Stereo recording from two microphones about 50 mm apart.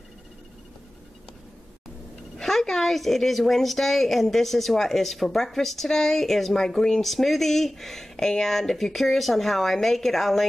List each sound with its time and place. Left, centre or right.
2.3 s a woman's voice: centre